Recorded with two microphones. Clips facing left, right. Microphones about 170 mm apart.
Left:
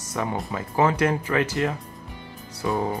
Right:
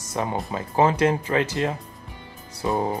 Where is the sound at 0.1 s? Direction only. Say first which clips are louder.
Right 1 dB; 25° right (ahead or behind).